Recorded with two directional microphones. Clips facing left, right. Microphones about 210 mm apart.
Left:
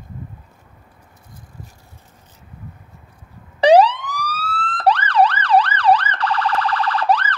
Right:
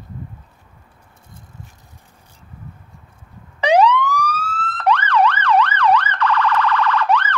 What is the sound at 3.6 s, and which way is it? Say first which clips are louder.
Police car: left 3 dB; 35° left (ahead or behind).